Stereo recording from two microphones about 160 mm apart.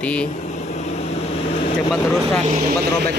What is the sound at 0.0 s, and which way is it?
Speech, 5° left (ahead or behind).